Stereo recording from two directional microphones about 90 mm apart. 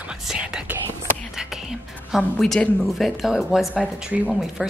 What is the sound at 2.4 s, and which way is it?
A woman's voice, 5° left (ahead or behind).